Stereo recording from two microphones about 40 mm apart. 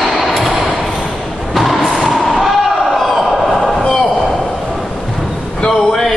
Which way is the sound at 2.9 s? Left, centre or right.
Centre.